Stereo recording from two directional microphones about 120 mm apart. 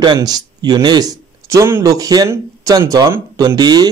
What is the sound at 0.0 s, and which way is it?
Speech, 35° right (ahead or behind).